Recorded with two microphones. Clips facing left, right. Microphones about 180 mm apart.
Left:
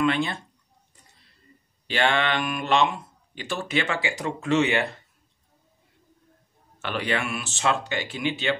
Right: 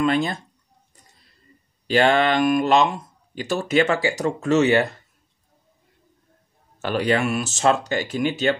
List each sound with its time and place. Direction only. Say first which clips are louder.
0.0 s speech: right 3 dB; 40° right (ahead or behind)
1.9 s speech: right 6 dB; 40° right (ahead or behind)
6.8 s speech: right 7 dB; 40° right (ahead or behind)